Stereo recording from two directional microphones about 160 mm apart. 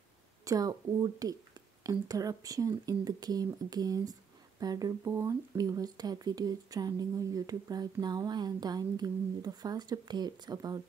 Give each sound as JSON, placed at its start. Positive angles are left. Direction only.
{"t": 0.5, "sound": "speech", "side_deg": -20}